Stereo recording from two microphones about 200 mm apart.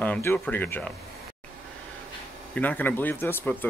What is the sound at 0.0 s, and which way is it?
Speech, 10° left (ahead or behind).